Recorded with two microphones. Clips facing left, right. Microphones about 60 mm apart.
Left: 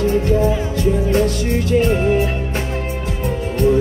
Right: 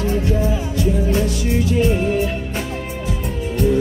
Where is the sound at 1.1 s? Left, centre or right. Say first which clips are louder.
Left 3 dB; left.